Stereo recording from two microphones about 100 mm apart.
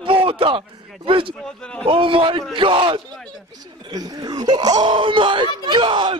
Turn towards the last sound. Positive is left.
turn(degrees=-55)  # may be behind; listen again after turning